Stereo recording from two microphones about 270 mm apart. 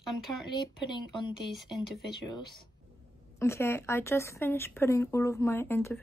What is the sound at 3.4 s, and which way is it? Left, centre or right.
Speech, centre.